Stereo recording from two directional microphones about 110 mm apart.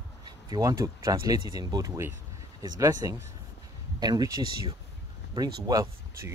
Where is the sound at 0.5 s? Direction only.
30° right (ahead or behind).